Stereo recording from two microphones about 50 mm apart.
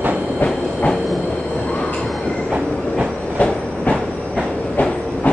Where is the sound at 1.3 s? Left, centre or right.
Left.